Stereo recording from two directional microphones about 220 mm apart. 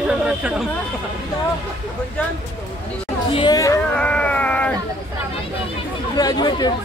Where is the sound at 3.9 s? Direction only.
5° left (ahead or behind).